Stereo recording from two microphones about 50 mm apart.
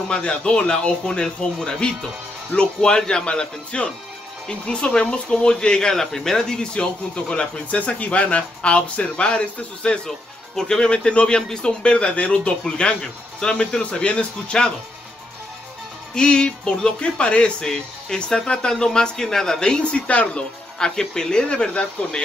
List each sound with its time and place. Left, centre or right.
0.1 s speech: left
10.0 s speech: centre
16.2 s speech: centre
20.9 s speech: centre